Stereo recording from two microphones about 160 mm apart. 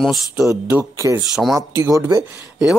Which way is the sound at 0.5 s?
15° right (ahead or behind).